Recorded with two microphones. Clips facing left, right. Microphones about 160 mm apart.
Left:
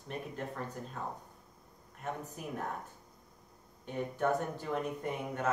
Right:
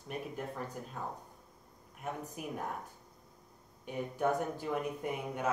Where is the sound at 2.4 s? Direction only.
10° right (ahead or behind).